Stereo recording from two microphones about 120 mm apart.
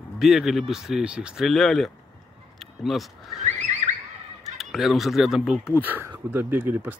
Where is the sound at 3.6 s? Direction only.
85° right.